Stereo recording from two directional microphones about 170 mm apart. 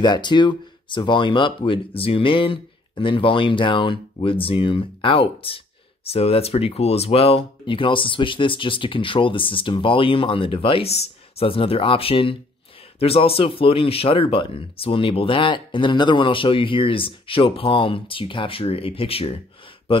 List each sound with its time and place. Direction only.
0.0 s speech: 25° left (ahead or behind)